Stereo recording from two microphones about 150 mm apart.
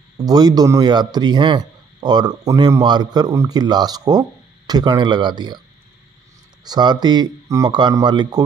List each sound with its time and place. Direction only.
0.2 s speech: 25° right (ahead or behind)
6.6 s speech: 30° right (ahead or behind)